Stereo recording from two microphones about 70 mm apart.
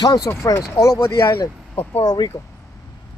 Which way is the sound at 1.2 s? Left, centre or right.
Left.